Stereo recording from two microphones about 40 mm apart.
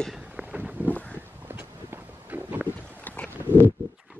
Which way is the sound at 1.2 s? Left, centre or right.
Right.